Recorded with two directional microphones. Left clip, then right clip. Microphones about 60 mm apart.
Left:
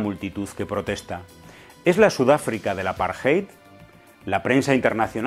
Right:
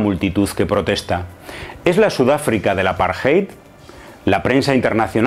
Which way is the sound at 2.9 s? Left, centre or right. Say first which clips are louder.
Right 7 dB; centre.